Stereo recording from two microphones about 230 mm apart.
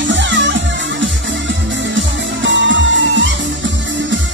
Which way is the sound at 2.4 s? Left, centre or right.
Right.